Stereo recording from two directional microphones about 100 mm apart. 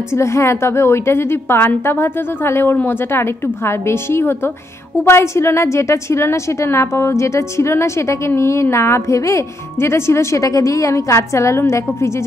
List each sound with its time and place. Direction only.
0.1 s a woman's voice: 30° left (ahead or behind)